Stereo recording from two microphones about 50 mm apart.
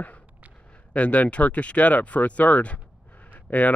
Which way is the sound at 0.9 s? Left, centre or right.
Left.